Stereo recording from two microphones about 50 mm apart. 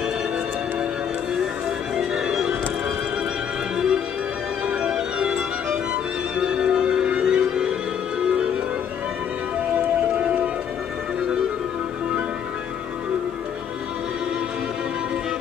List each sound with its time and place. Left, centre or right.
2.0 s music: centre
3.7 s music: centre
9.8 s music: right